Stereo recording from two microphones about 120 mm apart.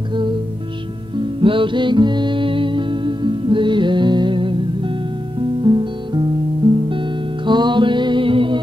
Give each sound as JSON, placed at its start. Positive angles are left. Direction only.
{"t": 0.1, "sound": "music", "side_deg": -40}